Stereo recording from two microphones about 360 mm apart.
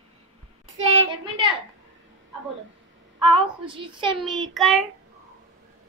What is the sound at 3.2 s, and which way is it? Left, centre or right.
Speech, centre.